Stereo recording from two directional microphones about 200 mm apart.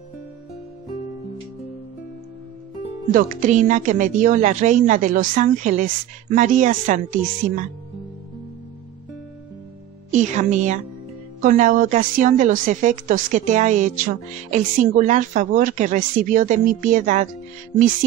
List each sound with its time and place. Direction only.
3.1 s speech: 45° right (ahead or behind)
10.1 s speech: 40° right (ahead or behind)